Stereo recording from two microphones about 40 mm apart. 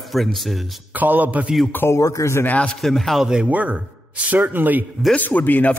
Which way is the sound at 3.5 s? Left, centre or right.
Right.